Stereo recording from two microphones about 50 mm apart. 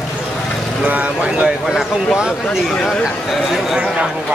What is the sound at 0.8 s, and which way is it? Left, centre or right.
Speech, right.